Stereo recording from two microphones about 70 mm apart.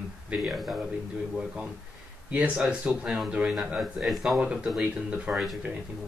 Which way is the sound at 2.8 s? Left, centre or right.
Centre.